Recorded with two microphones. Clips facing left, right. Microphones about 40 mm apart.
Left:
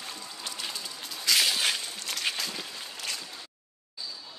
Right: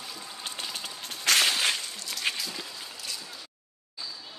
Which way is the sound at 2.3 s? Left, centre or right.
Centre.